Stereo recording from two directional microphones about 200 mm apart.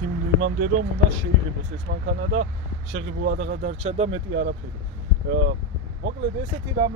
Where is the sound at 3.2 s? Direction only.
50° right (ahead or behind); by 4.2 s 35° right (ahead or behind).